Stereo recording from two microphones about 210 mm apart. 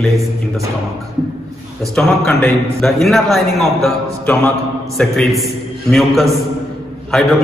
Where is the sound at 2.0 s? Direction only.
5° left (ahead or behind).